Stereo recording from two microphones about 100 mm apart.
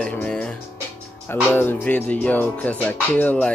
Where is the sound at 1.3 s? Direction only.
20° left (ahead or behind).